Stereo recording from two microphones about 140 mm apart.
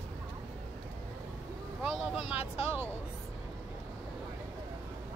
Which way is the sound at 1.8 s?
5° right (ahead or behind).